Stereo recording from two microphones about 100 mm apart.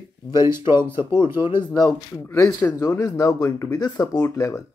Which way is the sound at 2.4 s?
30° left (ahead or behind).